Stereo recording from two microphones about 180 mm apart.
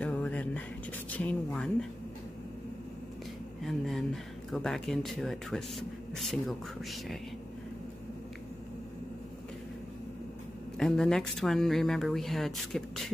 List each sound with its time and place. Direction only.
0.0 s a sound: 10° left (ahead or behind)
3.6 s speech: centre (ahead or behind)
10.8 s speech: 5° left (ahead or behind)